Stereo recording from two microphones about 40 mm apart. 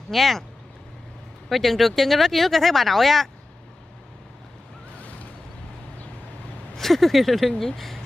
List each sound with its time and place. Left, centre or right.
0.1 s speech: centre
1.5 s speech: centre
4.9 s boat: left
6.8 s speech: centre